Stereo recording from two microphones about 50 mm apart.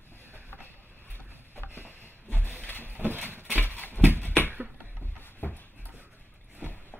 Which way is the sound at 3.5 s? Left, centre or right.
Left.